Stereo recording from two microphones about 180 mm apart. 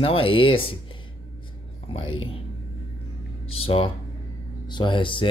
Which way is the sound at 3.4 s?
30° left (ahead or behind).